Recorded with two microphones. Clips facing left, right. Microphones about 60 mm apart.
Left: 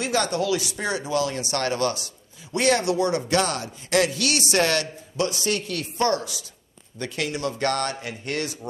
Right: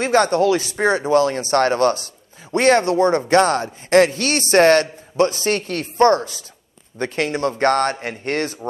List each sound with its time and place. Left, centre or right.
0.0 s speech: right